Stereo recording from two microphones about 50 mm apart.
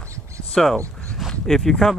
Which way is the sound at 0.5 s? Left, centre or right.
Centre.